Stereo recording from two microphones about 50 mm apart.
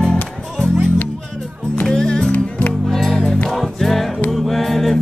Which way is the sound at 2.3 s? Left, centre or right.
Left.